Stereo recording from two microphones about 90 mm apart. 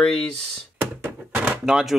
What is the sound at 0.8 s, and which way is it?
Thunk, 25° right (ahead or behind).